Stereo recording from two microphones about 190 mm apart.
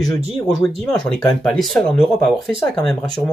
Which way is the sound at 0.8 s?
5° left (ahead or behind).